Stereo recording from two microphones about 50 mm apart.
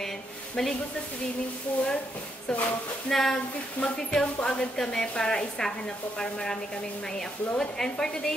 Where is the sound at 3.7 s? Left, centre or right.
Left.